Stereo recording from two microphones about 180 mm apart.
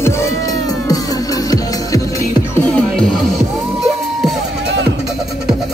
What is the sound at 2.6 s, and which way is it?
Music, 5° left (ahead or behind).